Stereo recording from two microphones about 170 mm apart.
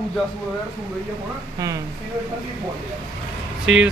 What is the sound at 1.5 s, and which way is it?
Speech, 20° right (ahead or behind).